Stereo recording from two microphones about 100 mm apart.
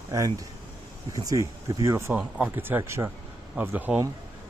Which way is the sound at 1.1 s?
35° right (ahead or behind).